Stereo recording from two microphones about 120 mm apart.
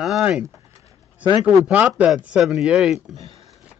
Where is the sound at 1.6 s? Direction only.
15° right (ahead or behind).